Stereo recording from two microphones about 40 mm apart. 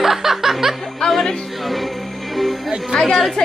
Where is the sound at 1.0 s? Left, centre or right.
Centre.